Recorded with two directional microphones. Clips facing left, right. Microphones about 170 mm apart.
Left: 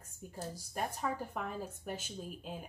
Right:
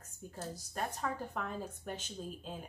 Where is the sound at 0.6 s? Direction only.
10° left (ahead or behind).